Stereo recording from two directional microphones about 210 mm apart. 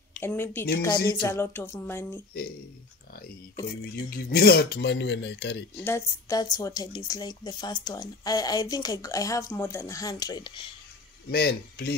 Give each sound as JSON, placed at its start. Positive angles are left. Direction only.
{"t": 0.2, "sound": "speech", "side_deg": 10}
{"t": 3.8, "sound": "speech", "side_deg": 45}
{"t": 5.9, "sound": "speech", "side_deg": 15}
{"t": 11.2, "sound": "speech", "side_deg": 50}